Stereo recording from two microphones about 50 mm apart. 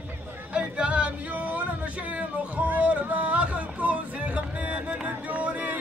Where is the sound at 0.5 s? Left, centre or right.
Right.